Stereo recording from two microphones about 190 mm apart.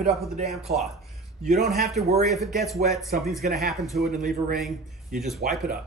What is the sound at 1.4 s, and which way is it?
Speech, 40° right (ahead or behind).